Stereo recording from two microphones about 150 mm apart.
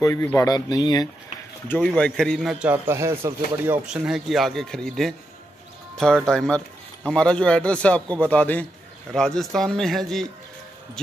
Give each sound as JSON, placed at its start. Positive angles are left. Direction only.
{"t": 0.0, "sound": "speech", "side_deg": 20}
{"t": 1.8, "sound": "a man's voice", "side_deg": 5}
{"t": 2.6, "sound": "a man's voice", "side_deg": -15}
{"t": 6.2, "sound": "a man's voice", "side_deg": 5}